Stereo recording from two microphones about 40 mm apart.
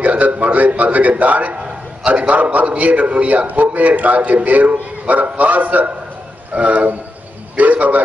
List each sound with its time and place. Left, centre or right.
0.0 s a man's voice: right